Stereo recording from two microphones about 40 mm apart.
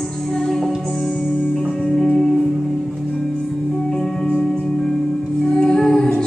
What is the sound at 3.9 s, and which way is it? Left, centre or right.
Music, centre.